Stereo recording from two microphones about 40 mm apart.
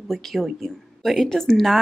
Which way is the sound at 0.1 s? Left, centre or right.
Centre.